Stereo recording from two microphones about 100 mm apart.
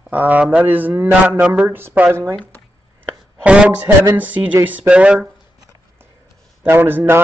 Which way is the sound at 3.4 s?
10° right (ahead or behind).